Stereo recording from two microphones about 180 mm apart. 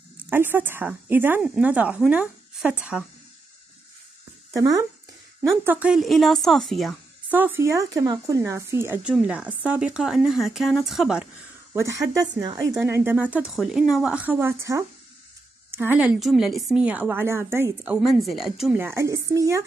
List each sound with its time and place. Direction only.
0.3 s speech: 10° right (ahead or behind)
4.5 s speech: 20° right (ahead or behind); by 7.0 s centre (ahead or behind)
7.2 s speech: 10° right (ahead or behind)
11.7 s speech: 15° right (ahead or behind)
17.9 s speech: centre (ahead or behind); by 19.6 s 15° right (ahead or behind)